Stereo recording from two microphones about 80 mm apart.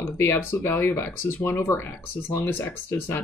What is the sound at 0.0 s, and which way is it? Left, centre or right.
Speech, left.